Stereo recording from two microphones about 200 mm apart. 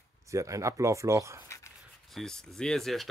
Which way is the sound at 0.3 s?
15° right (ahead or behind).